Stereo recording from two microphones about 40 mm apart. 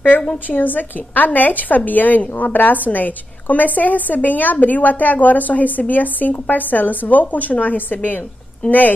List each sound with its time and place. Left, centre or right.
0.1 s a woman's voice: left